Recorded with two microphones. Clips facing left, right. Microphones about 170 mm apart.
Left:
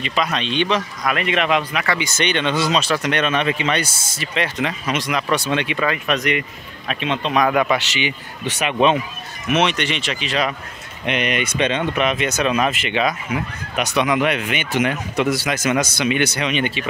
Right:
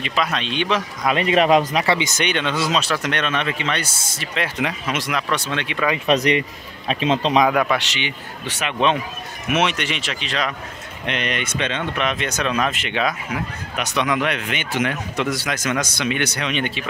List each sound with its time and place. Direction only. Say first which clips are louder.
0.0 s speech: left 1 dB; centre (ahead or behind)
1.0 s speech: right 5 dB; 30° right (ahead or behind)
2.1 s speech: left 2 dB; 5° right (ahead or behind)
4.6 s speech: left 1 dB; 5° right (ahead or behind)
5.3 s speech: left 4 dB; 10° left (ahead or behind)
6.0 s speech: right 3 dB; 30° right (ahead or behind)
7.4 s speech: left 1 dB; centre (ahead or behind)
8.5 s speech: left 3 dB; 15° left (ahead or behind)
9.5 s speech: left 2 dB; 5° right (ahead or behind)